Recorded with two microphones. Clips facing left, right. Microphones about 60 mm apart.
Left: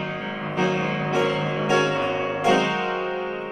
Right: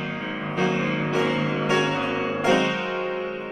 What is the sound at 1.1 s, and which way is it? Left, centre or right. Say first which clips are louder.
Music: left 2 dB; centre.